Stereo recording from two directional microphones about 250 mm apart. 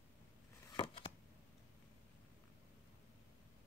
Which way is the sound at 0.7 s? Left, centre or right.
Left.